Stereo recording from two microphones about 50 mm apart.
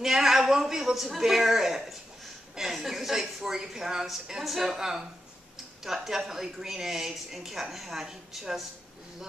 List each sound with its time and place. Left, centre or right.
0.0 s a woman's voice: centre
6.0 s a woman's voice: centre